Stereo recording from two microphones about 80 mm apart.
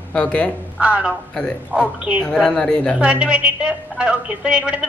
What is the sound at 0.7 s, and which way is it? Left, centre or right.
A woman's voice, centre.